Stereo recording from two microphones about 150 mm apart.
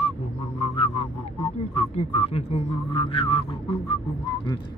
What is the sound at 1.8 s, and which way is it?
A man's voice, 40° left (ahead or behind).